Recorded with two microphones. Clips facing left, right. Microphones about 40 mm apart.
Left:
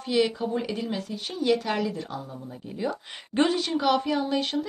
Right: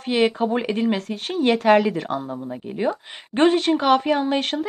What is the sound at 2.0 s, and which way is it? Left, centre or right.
Speech, right.